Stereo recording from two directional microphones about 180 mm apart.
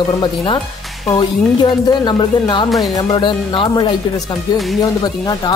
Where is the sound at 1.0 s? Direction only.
25° left (ahead or behind).